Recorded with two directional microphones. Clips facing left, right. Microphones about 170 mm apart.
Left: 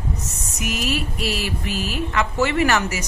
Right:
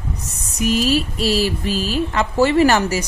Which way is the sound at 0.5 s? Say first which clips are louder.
Right 7 dB; 30° right (ahead or behind).